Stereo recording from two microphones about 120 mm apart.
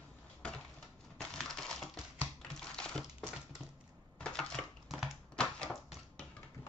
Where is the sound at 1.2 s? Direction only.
5° left (ahead or behind).